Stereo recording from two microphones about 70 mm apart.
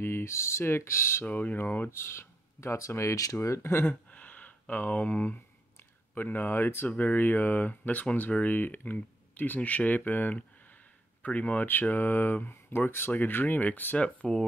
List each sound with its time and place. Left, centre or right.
0.0 s speech: left
1.2 s speech: left
1.9 s speech: left
3.3 s speech: left
4.1 s a sound: left
6.1 s speech: left